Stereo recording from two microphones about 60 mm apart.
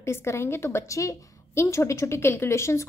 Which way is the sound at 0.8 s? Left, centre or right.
Left.